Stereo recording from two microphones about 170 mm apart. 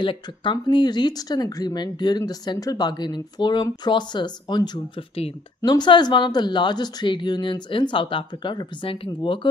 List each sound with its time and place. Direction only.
0.0 s speech: 30° left (ahead or behind)